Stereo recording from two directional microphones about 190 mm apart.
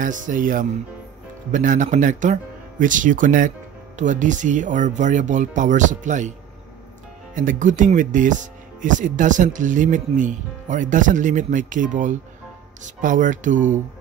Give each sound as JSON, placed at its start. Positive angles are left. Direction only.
{"t": 0.0, "sound": "speech", "side_deg": -45}
{"t": 7.3, "sound": "speech", "side_deg": -45}